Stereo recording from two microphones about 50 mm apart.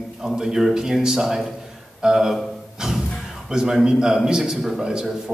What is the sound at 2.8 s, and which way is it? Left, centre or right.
Music, centre.